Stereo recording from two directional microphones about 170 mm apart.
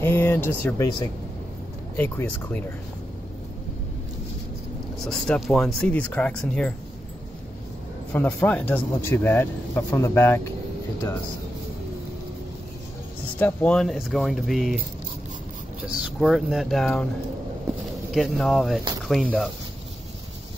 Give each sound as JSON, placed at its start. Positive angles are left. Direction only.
{"t": 0.0, "sound": "speech", "side_deg": 15}
{"t": 2.0, "sound": "speech", "side_deg": 10}
{"t": 5.0, "sound": "speech", "side_deg": 5}
{"t": 8.1, "sound": "speech", "side_deg": 10}
{"t": 13.4, "sound": "speech", "side_deg": 5}
{"t": 15.9, "sound": "speech", "side_deg": 0}
{"t": 18.1, "sound": "speech", "side_deg": 0}